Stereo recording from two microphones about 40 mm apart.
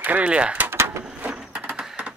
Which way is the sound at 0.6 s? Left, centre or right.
Right.